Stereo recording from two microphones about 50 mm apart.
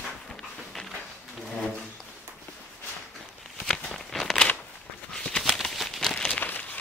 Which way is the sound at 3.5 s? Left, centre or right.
Centre.